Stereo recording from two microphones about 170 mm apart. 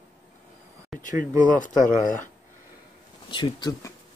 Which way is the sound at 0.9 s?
Centre (ahead or behind).